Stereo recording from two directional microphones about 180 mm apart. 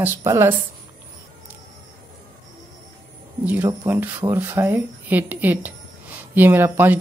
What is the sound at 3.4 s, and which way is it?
Speech, 10° right (ahead or behind).